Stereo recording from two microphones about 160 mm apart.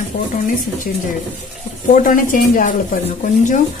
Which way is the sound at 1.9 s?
55° left (ahead or behind).